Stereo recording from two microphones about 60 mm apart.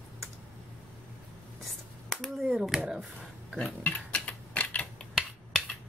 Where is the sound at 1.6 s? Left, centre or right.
Centre.